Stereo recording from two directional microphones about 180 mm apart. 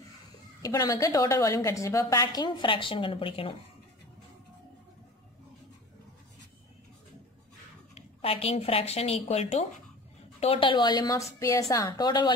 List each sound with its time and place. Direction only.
0.6 s a woman's voice: 20° left (ahead or behind)
7.9 s a woman's voice: 35° left (ahead or behind)